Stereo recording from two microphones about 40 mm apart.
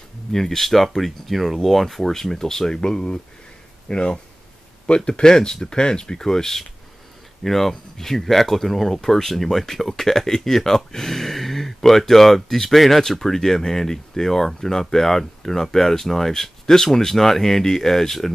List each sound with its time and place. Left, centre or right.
0.3 s speech: centre